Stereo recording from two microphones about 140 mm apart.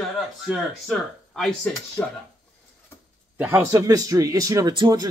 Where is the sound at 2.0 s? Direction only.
15° left (ahead or behind).